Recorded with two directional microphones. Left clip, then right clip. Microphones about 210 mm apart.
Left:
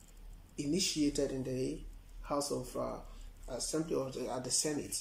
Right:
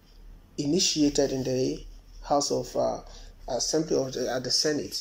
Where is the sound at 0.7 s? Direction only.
5° left (ahead or behind).